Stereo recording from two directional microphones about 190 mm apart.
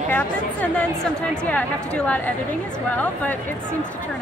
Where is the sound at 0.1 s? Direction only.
10° left (ahead or behind).